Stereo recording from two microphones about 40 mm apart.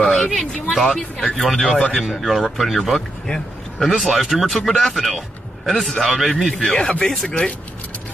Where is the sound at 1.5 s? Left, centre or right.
Centre.